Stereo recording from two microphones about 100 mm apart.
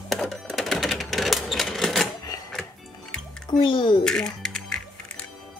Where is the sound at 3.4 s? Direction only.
50° left (ahead or behind).